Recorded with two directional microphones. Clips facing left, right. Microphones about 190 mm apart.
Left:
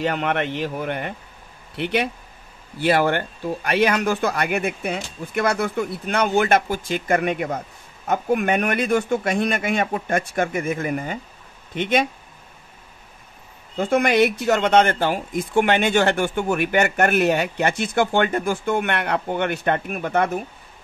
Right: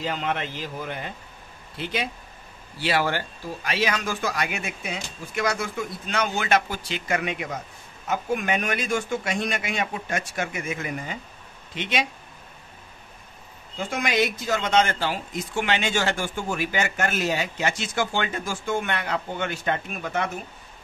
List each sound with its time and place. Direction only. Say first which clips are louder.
0.0 s speech: left 6 dB; 65° left (ahead or behind)
2.8 s speech: left 6 dB; 50° left (ahead or behind)
13.7 s speech: left 7 dB; 60° left (ahead or behind)